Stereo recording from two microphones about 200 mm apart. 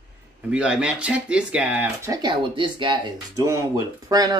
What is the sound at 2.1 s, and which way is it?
Speech, 20° right (ahead or behind).